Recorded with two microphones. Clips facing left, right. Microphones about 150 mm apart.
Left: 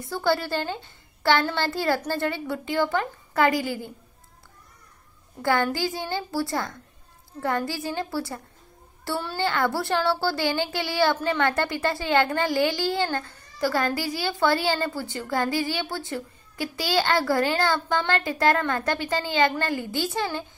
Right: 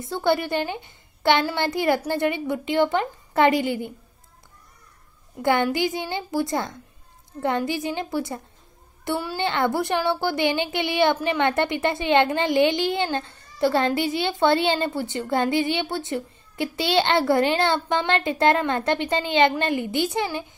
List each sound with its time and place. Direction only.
0.0 s speech: 20° right (ahead or behind)
5.4 s speech: 20° right (ahead or behind)